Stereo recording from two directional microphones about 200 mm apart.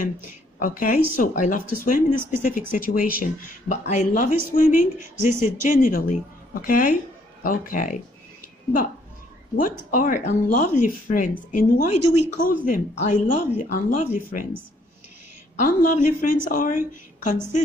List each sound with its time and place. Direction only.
0.6 s a woman's voice: 40° left (ahead or behind)
9.6 s speech: 40° left (ahead or behind)
12.4 s a woman's voice: 45° left (ahead or behind)
15.6 s a woman's voice: 45° left (ahead or behind)